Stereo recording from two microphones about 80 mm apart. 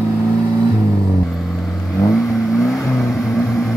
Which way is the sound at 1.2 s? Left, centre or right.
Centre.